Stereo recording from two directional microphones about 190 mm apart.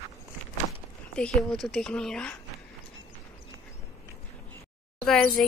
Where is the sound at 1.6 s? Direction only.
5° left (ahead or behind).